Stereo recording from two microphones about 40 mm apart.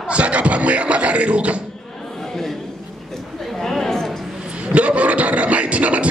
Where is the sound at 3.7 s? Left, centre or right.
Centre.